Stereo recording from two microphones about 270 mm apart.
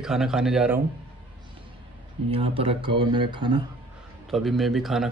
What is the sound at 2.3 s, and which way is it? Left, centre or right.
Speech, right.